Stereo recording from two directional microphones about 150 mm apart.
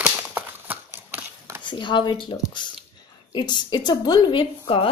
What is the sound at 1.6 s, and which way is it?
A woman's voice, 30° left (ahead or behind).